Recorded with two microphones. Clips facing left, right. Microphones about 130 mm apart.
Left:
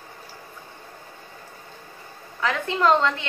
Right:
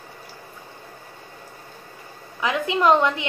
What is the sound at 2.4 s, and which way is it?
Speech, 15° right (ahead or behind).